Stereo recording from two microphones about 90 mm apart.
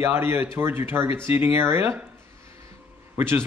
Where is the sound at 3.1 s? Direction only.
25° right (ahead or behind).